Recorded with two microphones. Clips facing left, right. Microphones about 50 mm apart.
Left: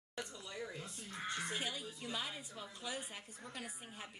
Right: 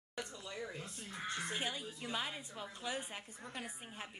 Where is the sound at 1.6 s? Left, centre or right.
Right.